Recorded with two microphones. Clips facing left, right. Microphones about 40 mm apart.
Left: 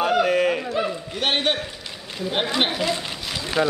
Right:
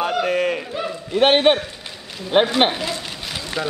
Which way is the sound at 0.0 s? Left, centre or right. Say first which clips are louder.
Left 1 dB; centre.